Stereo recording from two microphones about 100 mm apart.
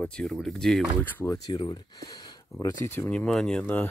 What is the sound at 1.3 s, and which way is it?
Speech, 40° left (ahead or behind).